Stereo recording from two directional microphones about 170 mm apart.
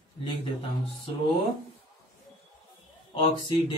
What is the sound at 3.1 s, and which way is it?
Speech, 30° left (ahead or behind).